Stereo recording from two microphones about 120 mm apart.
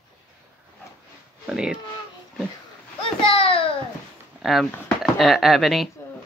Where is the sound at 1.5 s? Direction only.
5° right (ahead or behind).